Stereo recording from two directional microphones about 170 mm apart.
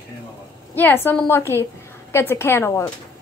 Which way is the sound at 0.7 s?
10° left (ahead or behind).